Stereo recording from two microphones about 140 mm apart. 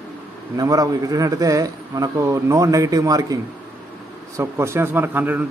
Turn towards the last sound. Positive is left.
turn(degrees=-15)  # may be behind; listen again after turning